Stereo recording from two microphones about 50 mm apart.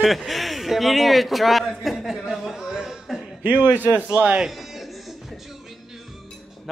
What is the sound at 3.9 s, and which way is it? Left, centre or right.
Speech, right.